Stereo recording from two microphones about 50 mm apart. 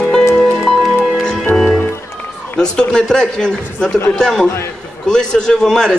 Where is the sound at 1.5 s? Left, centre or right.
Centre.